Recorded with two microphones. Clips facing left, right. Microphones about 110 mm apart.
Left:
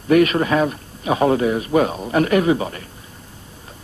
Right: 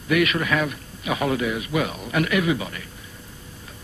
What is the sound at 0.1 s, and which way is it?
A man's voice, 35° left (ahead or behind).